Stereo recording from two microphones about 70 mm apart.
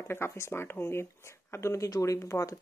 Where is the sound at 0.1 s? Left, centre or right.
Left.